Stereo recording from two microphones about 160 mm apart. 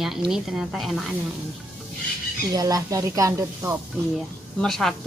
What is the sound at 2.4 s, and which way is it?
Speech, 25° right (ahead or behind).